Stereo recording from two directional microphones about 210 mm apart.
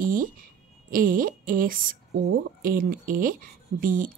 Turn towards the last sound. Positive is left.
turn(degrees=-40)  # may be behind; listen again after turning